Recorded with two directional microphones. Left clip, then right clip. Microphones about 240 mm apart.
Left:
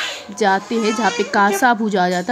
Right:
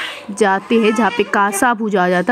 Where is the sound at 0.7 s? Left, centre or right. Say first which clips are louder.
Right 5 dB; left.